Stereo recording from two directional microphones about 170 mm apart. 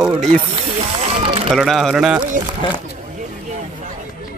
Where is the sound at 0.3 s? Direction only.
40° right (ahead or behind).